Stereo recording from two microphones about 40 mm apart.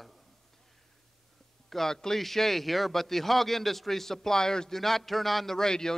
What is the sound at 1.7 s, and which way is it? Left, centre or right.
A man's voice, centre.